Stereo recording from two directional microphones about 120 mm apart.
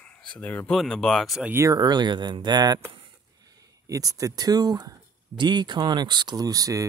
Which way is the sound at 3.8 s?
30° right (ahead or behind).